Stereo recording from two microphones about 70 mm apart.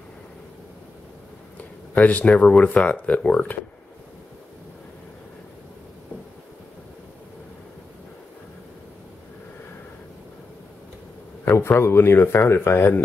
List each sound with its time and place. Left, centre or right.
2.0 s speech: left
11.5 s speech: left